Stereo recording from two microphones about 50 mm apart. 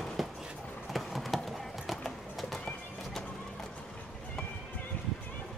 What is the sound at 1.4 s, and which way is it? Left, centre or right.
Clip-clop, centre.